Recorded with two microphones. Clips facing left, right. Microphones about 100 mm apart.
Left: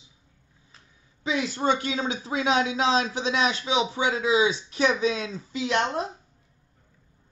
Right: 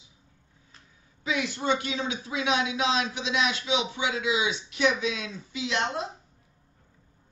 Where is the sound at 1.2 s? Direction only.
35° left (ahead or behind).